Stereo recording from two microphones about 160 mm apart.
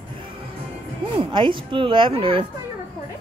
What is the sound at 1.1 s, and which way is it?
Speech, 30° right (ahead or behind).